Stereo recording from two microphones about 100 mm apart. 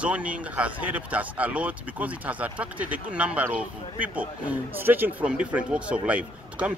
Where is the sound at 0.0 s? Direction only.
15° right (ahead or behind).